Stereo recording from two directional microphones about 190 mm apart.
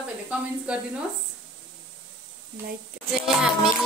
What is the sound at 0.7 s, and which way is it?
Speech, 5° right (ahead or behind).